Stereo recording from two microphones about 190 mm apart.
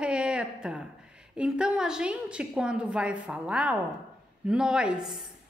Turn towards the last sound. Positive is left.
turn(degrees=0)  # may be behind; listen again after turning